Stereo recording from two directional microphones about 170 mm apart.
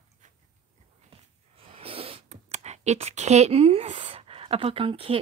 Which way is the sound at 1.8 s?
35° right (ahead or behind).